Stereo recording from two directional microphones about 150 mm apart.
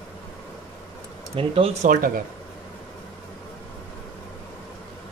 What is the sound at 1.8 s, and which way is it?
Speech, 70° right (ahead or behind).